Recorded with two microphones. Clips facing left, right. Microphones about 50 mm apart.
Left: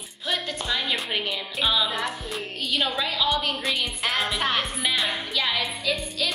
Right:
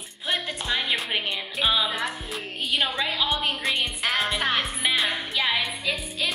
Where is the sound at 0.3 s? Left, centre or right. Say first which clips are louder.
Even; centre.